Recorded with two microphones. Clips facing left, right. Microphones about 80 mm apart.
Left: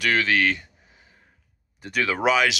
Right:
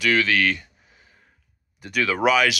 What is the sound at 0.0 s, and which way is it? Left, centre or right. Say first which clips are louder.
Speech: right 1 dB; left.